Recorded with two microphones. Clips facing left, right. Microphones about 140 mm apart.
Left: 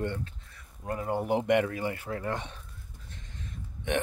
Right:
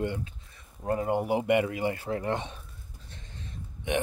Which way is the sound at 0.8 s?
25° right (ahead or behind).